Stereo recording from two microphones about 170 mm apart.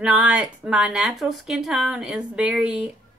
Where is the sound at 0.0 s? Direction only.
5° right (ahead or behind).